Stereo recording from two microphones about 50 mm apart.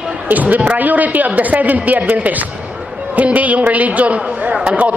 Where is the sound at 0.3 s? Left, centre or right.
Right.